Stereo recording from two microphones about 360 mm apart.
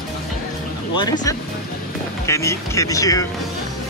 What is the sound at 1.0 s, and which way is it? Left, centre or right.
Speech, centre.